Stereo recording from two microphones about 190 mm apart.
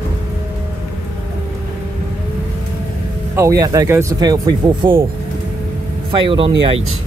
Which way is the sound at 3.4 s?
15° right (ahead or behind).